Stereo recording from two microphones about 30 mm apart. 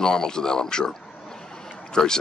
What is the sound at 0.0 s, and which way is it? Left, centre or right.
Speech, left.